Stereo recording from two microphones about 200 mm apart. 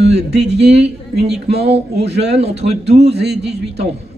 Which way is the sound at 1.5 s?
55° right (ahead or behind).